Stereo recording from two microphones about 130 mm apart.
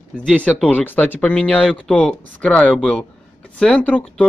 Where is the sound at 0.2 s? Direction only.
10° left (ahead or behind).